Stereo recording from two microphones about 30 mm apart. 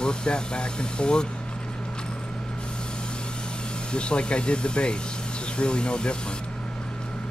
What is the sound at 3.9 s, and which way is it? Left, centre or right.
Speech, left.